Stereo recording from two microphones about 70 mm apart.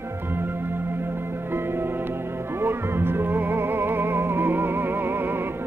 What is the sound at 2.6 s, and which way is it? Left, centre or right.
Music, right.